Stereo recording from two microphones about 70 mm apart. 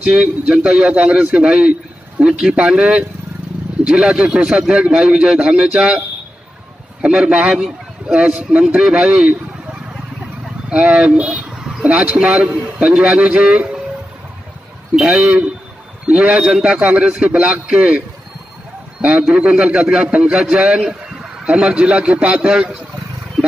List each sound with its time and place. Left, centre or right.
0.0 s a man's voice: centre
10.4 s a man's voice: centre
15.0 s a man's voice: centre